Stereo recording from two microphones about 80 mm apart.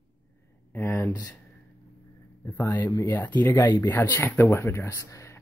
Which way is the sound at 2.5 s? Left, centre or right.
Left.